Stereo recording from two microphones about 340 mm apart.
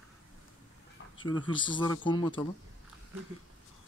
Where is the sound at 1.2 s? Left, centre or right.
Centre.